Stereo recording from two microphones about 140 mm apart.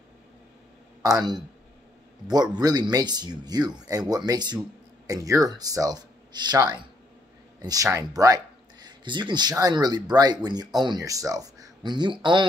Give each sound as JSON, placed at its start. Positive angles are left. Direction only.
{"t": 1.0, "sound": "speech", "side_deg": -30}